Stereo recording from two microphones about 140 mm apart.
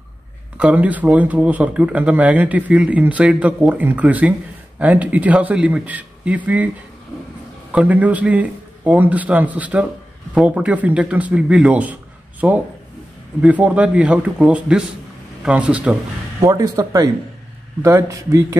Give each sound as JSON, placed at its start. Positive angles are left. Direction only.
{"t": 0.6, "sound": "speech", "side_deg": -10}
{"t": 7.7, "sound": "speech", "side_deg": -10}
{"t": 16.3, "sound": "speech", "side_deg": -25}